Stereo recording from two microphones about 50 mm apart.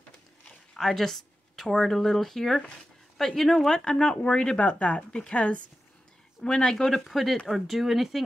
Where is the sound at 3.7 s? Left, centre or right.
Centre.